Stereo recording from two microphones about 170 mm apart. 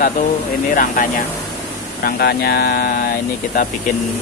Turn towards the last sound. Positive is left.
turn(degrees=55)  # may be behind; listen again after turning